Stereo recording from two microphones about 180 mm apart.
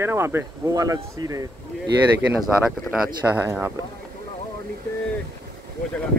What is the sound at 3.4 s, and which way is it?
Speech, 15° right (ahead or behind).